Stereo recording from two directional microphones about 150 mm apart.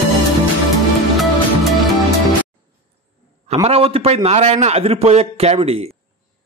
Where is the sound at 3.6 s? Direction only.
40° right (ahead or behind).